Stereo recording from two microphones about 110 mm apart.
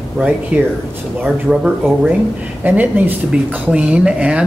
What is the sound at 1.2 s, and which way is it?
Speech, 5° right (ahead or behind).